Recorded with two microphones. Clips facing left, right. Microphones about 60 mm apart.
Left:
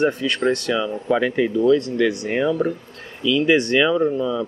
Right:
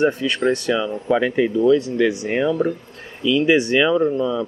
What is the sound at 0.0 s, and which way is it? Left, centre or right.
Speech, centre.